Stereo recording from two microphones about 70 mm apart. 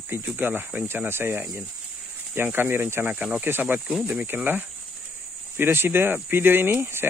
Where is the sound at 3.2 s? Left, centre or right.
Right.